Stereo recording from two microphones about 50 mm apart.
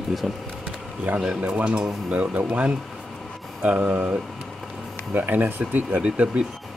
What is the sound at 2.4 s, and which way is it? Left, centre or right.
Speech, right.